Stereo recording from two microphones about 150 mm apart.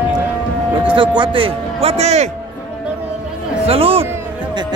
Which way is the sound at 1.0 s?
35° right (ahead or behind).